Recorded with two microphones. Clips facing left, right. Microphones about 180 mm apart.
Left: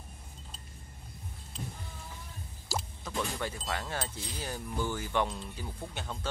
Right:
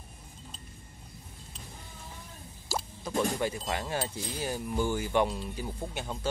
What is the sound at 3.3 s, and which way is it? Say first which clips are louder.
Speech: right 4 dB; 15° right (ahead or behind).